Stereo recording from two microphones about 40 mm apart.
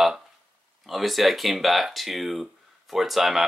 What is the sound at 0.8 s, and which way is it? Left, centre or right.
Speech, centre.